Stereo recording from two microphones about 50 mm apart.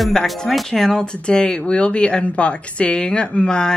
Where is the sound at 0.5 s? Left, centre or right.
Centre.